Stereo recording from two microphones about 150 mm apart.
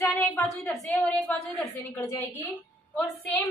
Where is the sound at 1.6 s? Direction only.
20° left (ahead or behind).